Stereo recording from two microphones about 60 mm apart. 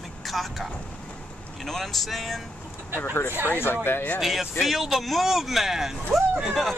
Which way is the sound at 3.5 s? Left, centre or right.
Left.